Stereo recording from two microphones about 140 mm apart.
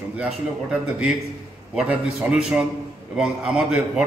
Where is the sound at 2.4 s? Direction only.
5° right (ahead or behind).